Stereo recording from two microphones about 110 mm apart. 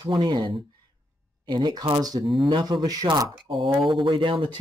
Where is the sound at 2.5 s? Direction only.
45° right (ahead or behind).